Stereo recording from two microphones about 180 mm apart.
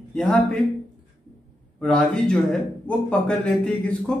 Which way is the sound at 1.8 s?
5° left (ahead or behind).